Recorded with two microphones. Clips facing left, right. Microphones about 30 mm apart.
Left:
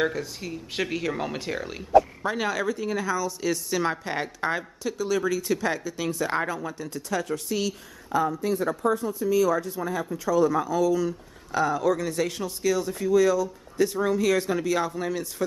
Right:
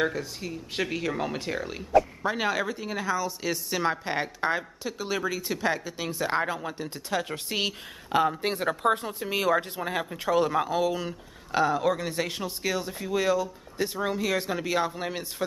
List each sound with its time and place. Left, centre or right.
0.0 s speech: centre
2.3 s speech: centre
4.9 s speech: right
5.2 s speech: centre
6.7 s speech: right
8.1 s speech: right
11.6 s speech: right